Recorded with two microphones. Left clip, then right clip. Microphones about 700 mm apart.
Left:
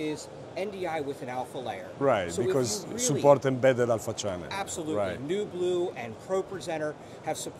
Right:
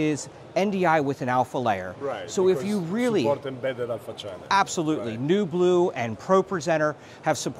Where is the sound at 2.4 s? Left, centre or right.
Right.